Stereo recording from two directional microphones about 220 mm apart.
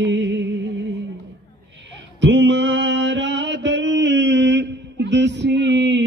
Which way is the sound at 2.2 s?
55° right (ahead or behind).